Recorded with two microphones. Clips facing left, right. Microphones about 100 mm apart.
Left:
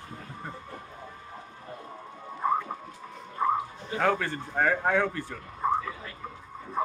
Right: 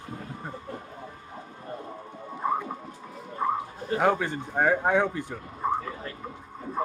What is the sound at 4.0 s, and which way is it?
A man's voice, 15° right (ahead or behind).